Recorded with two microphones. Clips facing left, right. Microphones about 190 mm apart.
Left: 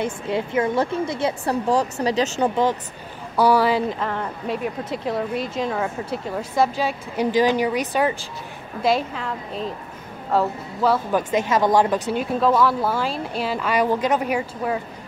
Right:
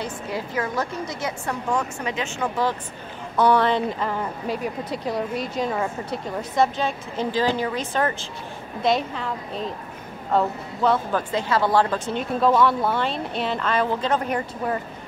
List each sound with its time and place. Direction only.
0.3 s speech: 25° left (ahead or behind)
3.3 s speech: 5° left (ahead or behind)
8.8 s speech: centre (ahead or behind)
10.3 s speech: 5° left (ahead or behind)
12.1 s speech: 5° left (ahead or behind)